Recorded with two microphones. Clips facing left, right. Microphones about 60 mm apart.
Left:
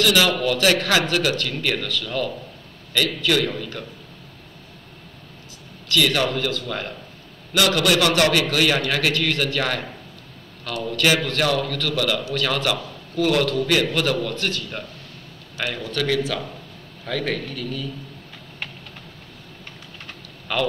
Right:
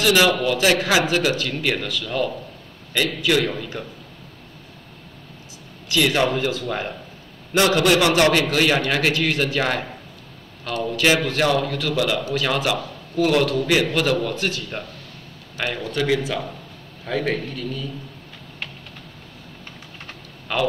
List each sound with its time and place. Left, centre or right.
0.0 s a man's voice: right
5.9 s a man's voice: right
15.5 s a man's voice: right
16.2 s a man's voice: centre
20.5 s a man's voice: centre